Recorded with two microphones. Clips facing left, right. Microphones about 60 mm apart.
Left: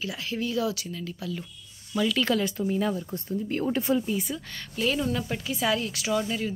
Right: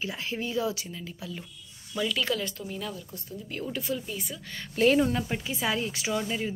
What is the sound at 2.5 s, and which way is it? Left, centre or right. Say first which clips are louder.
Speech: left 9 dB; left.